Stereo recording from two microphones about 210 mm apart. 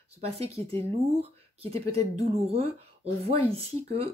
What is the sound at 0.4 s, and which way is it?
Speech, 30° right (ahead or behind).